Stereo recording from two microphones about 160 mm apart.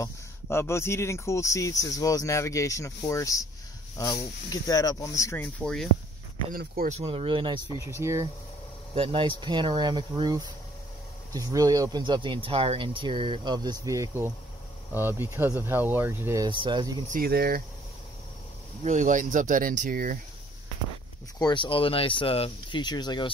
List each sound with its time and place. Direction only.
0.0 s speech: 15° left (ahead or behind)
6.5 s speech: 65° right (ahead or behind)
6.9 s speech: 40° right (ahead or behind)
7.8 s speech: 15° right (ahead or behind)
8.9 s speech: 30° right (ahead or behind); by 16.4 s 15° right (ahead or behind)
16.4 s speech: 30° right (ahead or behind)
17.1 s speech: 70° right (ahead or behind)
18.9 s speech: 50° right (ahead or behind)
21.4 s speech: 30° left (ahead or behind)